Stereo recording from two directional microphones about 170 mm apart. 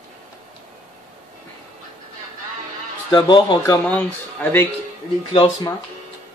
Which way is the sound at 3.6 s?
10° left (ahead or behind).